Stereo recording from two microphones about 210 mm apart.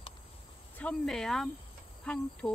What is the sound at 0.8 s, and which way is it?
Speech, 5° left (ahead or behind).